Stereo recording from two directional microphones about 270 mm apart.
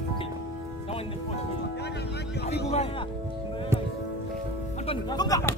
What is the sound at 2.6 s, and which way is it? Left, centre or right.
Music, left.